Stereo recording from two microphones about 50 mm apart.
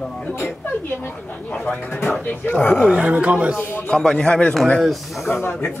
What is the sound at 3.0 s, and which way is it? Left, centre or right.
Speech, right.